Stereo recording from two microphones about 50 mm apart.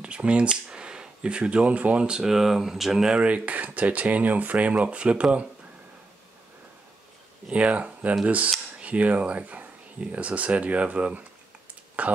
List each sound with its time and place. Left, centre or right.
0.0 s speech: right
2.0 s speech: centre
3.2 s speech: right
7.4 s speech: right